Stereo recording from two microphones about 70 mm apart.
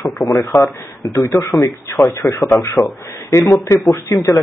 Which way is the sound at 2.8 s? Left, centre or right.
Centre.